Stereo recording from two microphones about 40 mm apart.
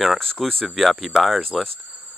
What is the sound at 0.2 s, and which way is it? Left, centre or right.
Speech, centre.